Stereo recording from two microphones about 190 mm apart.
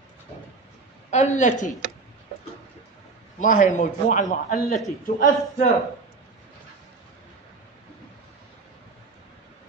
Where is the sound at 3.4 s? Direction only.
40° left (ahead or behind).